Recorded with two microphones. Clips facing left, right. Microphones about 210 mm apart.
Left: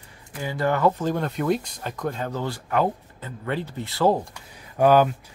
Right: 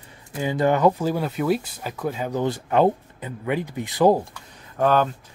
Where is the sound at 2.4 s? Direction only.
20° right (ahead or behind).